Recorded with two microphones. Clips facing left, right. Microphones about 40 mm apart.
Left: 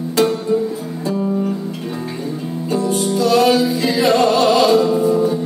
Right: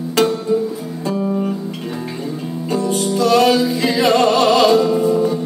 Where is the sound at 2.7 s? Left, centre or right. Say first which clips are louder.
Even; right.